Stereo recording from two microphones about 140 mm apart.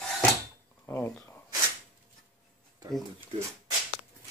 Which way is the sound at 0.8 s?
15° left (ahead or behind).